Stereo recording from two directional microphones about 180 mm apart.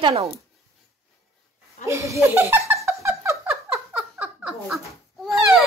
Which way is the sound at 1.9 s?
15° right (ahead or behind).